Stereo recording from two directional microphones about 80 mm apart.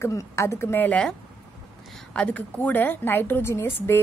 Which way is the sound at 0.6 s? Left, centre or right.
Left.